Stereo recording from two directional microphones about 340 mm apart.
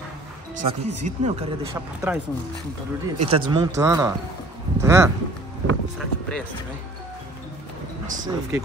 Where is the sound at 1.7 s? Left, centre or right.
Centre.